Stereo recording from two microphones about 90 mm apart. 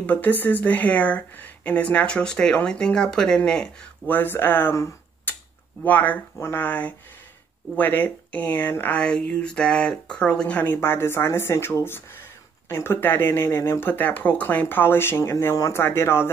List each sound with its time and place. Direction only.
0.0 s speech: 15° left (ahead or behind)
4.1 s speech: 25° left (ahead or behind)
5.3 s tick-tock: 20° left (ahead or behind)
5.9 s speech: 20° left (ahead or behind)
9.0 s speech: 10° left (ahead or behind); by 16.3 s 30° left (ahead or behind)